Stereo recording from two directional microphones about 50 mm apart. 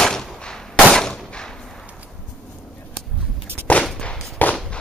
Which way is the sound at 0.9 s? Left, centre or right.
Centre.